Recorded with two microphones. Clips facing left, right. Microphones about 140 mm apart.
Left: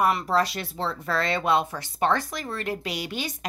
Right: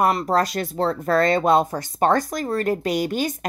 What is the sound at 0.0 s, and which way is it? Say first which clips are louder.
A woman's voice: right 3 dB; 40° right (ahead or behind).